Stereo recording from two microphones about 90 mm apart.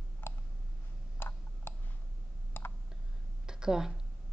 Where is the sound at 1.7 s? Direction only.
25° left (ahead or behind).